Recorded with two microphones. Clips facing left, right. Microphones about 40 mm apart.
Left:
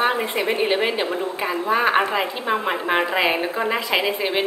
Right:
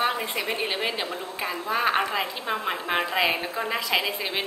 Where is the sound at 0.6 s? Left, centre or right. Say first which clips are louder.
Left 7 dB; left.